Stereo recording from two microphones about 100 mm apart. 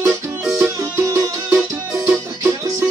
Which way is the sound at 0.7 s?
30° right (ahead or behind).